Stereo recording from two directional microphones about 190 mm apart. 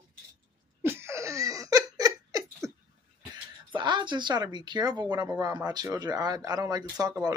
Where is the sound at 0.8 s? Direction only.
10° right (ahead or behind).